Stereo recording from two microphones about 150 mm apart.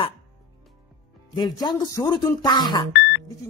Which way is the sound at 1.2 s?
30° left (ahead or behind).